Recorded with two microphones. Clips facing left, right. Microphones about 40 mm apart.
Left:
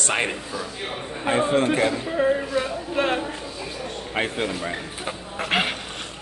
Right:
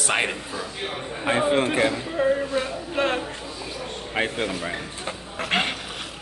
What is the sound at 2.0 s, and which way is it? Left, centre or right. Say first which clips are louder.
A woman's voice: left 1 dB; centre.